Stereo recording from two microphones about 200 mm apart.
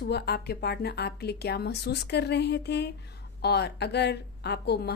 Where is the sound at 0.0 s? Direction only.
55° left (ahead or behind).